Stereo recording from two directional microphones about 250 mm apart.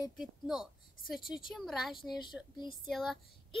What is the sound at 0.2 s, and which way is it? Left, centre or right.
A child's voice, centre.